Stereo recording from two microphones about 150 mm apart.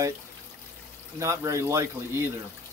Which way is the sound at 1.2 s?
20° right (ahead or behind).